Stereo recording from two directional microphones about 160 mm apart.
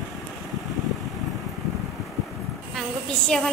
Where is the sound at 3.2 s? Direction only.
5° left (ahead or behind).